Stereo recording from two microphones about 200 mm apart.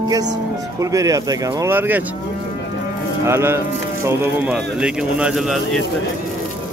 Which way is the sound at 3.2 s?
10° right (ahead or behind).